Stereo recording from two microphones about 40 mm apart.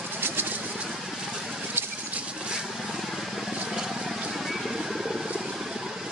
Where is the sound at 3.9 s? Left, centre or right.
Centre.